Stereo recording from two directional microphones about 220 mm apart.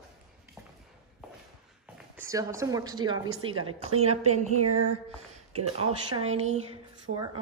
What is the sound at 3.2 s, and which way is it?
Speech, 80° right.